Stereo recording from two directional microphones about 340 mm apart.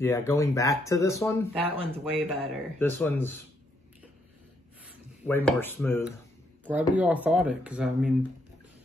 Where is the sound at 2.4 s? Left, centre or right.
Centre.